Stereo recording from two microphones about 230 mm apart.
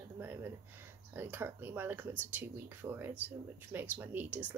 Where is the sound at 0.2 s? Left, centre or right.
Centre.